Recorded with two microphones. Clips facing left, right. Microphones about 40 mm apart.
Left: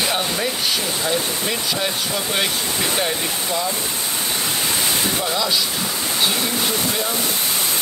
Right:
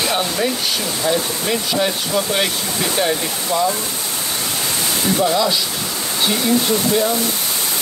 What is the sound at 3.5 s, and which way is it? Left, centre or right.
Speech, right.